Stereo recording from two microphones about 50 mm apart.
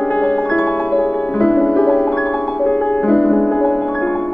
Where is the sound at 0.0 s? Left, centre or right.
Left.